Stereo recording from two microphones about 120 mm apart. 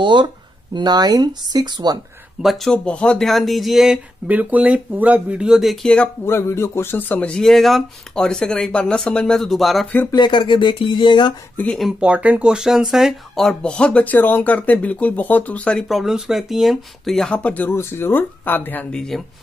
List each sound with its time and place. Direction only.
0.0 s speech: 40° right (ahead or behind)
2.4 s speech: 5° left (ahead or behind)
6.2 s speech: 20° left (ahead or behind); by 9.8 s centre (ahead or behind)
10.1 s speech: 40° left (ahead or behind)
11.5 s speech: 10° left (ahead or behind)
11.8 s speech: 10° right (ahead or behind); by 15.8 s 10° left (ahead or behind)
15.9 s speech: centre (ahead or behind)